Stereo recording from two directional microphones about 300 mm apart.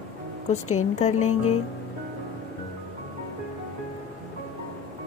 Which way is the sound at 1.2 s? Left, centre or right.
Left.